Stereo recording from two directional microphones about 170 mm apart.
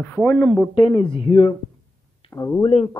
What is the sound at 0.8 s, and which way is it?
Speech, 30° left (ahead or behind).